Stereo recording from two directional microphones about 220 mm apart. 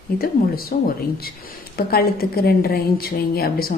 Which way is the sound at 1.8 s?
45° left (ahead or behind).